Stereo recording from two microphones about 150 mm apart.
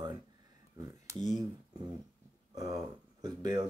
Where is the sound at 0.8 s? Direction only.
20° right (ahead or behind).